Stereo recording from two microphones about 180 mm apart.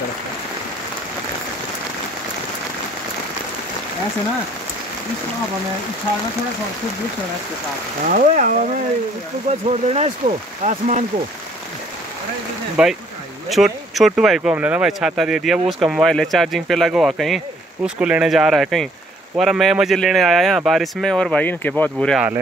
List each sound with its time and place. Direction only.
8.1 s speech: 50° right (ahead or behind)
12.8 s speech: 5° right (ahead or behind)